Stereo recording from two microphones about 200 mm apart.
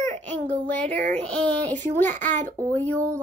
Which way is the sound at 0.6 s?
5° left (ahead or behind).